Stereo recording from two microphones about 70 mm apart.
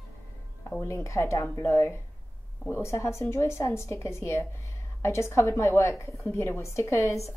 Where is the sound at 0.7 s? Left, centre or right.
Left.